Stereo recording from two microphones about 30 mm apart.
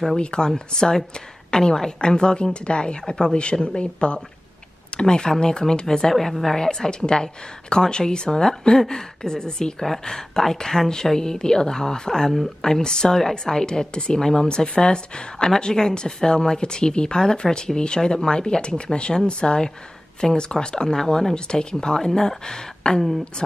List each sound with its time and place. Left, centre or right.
0.2 s speech: left
0.5 s speech: centre
6.1 s a woman's voice: centre; by 14.2 s left
14.2 s a woman's voice: centre
21.5 s speech: left